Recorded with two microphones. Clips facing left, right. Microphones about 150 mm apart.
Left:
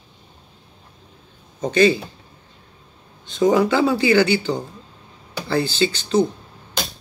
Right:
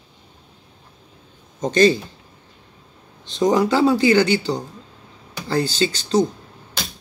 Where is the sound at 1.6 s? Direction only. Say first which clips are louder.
Right 1 dB; 40° right (ahead or behind).